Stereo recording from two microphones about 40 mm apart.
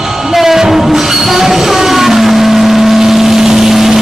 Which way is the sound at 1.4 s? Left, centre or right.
Centre.